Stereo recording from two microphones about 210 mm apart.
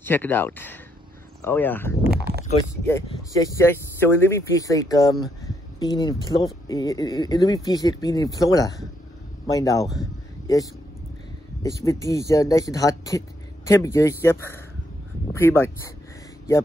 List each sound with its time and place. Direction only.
0.0 s speech: 10° left (ahead or behind)
3.3 s speech: 15° left (ahead or behind)